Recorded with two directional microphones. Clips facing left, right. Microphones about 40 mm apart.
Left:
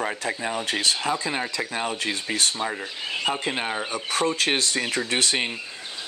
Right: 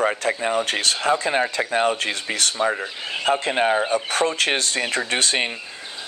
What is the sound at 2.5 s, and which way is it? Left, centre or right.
Speech, right.